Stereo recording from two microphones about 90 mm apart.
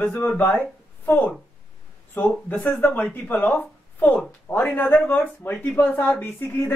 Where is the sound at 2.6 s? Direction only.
15° left (ahead or behind).